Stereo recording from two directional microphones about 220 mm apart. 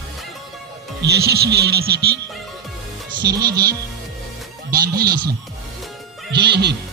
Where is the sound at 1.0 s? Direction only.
45° right (ahead or behind).